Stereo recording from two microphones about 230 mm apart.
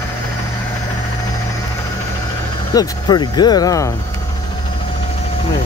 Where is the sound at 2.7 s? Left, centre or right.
Centre.